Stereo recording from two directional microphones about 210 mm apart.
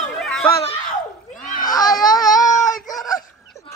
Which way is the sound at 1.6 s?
20° left (ahead or behind).